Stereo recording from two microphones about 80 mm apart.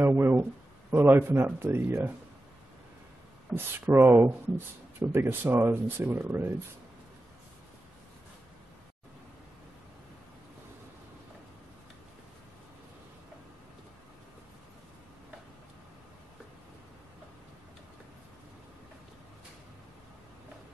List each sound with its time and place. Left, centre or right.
0.0 s a sound: right
0.9 s speech: right
3.5 s speech: right